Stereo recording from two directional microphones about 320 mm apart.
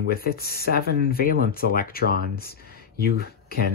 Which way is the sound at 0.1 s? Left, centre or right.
Left.